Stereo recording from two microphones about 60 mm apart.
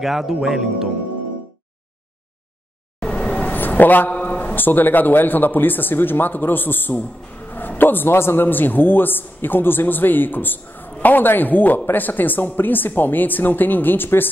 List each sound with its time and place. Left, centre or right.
0.0 s speech: centre
3.0 s vehicle: centre
3.5 s a sound: left
4.6 s speech: left